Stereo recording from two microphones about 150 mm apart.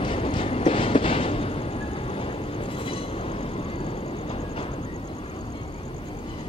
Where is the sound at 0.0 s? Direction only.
35° left (ahead or behind).